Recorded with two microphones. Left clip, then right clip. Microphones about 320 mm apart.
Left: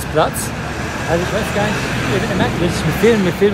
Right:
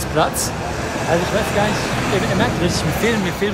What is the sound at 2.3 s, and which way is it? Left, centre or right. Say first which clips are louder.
Speech: left 1 dB; centre.